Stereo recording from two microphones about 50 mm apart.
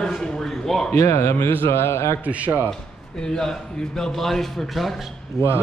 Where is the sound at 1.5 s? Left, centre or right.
Left.